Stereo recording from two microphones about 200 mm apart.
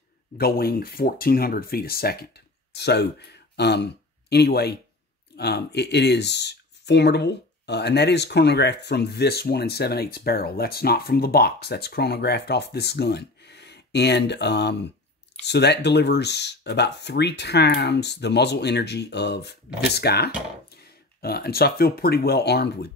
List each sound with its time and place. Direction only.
0.4 s speech: 50° left (ahead or behind)